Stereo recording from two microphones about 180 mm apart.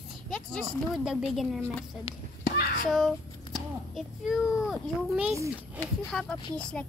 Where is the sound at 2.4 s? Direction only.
55° left (ahead or behind).